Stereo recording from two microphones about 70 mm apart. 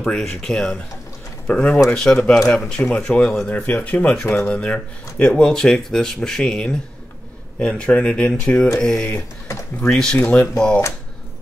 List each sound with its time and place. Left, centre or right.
0.0 s speech: centre
3.4 s speech: left